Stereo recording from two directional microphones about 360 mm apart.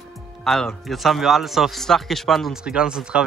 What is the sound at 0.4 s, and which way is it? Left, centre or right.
Speech, centre.